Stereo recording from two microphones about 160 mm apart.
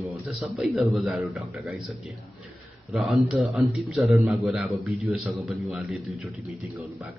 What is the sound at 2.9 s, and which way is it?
A man's voice, centre (ahead or behind).